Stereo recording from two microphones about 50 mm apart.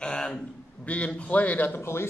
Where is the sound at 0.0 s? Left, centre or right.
Centre.